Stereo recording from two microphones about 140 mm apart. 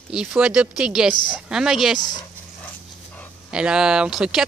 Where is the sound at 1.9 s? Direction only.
30° left (ahead or behind).